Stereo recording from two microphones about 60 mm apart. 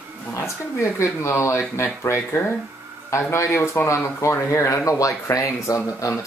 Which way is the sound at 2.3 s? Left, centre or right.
Left.